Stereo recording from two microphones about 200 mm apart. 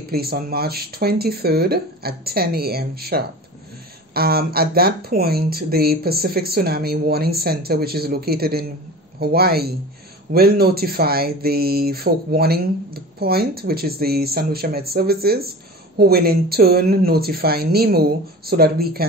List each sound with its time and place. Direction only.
0.1 s speech: 50° right (ahead or behind)